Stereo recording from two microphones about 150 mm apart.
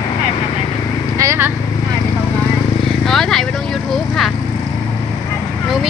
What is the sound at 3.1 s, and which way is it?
Vehicle, centre (ahead or behind).